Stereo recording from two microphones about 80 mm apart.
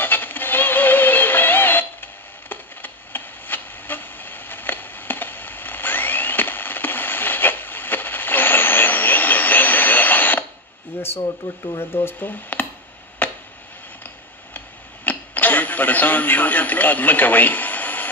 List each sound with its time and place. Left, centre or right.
0.0 s synthetic singing: left
2.5 s a sound: left
11.2 s speech: left
11.8 s speech: left
13.2 s a sound: left
15.0 s speech: left